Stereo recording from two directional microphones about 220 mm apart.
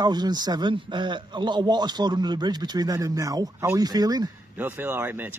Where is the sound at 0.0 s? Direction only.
20° right (ahead or behind).